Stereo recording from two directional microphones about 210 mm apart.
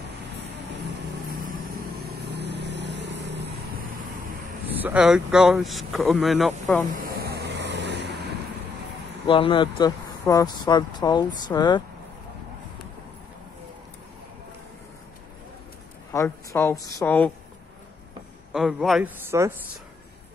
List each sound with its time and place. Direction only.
2.0 s vehicle: 50° right (ahead or behind)
4.6 s speech: 5° right (ahead or behind)
7.0 s vehicle: 50° right (ahead or behind)
9.3 s speech: 25° left (ahead or behind)
16.1 s a woman's voice: 10° left (ahead or behind)
18.5 s speech: centre (ahead or behind)